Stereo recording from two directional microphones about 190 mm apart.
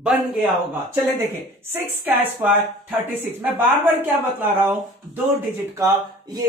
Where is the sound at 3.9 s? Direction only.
10° right (ahead or behind).